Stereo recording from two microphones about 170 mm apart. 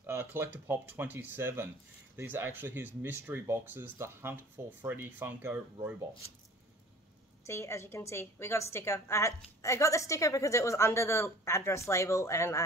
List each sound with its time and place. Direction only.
0.0 s speech: 10° right (ahead or behind)
7.4 s a woman's voice: 15° left (ahead or behind)